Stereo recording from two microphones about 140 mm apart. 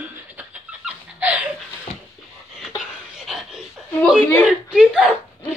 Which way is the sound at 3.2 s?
Centre (ahead or behind).